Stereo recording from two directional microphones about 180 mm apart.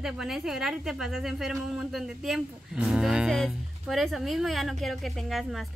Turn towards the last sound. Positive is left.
turn(degrees=0)  # may be behind; listen again after turning